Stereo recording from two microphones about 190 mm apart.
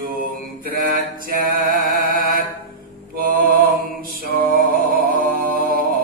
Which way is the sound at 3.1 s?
50° right (ahead or behind).